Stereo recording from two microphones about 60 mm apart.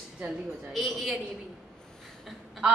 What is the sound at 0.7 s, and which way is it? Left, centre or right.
Speech, centre.